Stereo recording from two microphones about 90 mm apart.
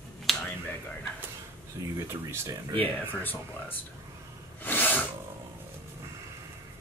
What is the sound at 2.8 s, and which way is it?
Speech, 20° left (ahead or behind).